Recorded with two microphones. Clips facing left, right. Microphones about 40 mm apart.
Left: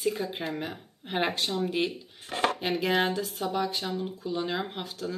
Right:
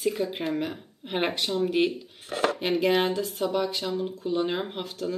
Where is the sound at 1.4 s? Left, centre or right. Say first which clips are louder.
Right 3 dB; centre.